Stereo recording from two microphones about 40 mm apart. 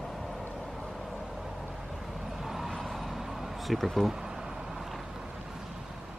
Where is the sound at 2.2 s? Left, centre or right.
Centre.